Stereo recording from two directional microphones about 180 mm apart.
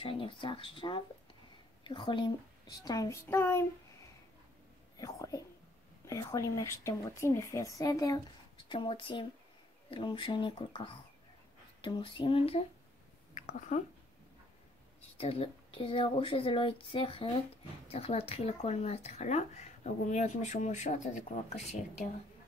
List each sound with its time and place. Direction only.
0.0 s speech: 30° left (ahead or behind)
2.8 s child singing: 20° left (ahead or behind)
4.9 s a woman's voice: 20° left (ahead or behind)
13.3 s a sound: 40° left (ahead or behind)
15.1 s speech: 35° left (ahead or behind)